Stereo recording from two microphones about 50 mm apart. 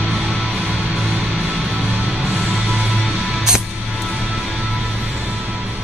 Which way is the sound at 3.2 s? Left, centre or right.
Centre.